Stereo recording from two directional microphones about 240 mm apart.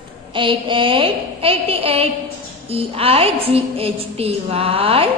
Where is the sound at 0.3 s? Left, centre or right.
Right.